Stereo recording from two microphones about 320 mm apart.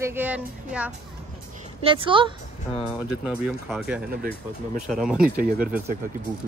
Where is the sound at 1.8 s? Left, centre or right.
Centre.